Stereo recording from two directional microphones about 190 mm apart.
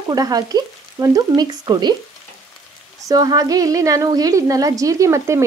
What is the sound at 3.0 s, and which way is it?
A woman's voice, 20° right (ahead or behind).